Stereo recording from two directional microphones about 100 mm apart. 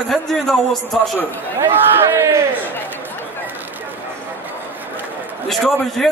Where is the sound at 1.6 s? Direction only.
25° right (ahead or behind).